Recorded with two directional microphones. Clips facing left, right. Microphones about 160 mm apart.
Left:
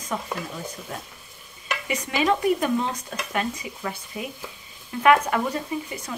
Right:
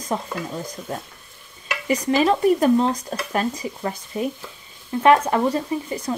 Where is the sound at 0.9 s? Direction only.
35° right (ahead or behind).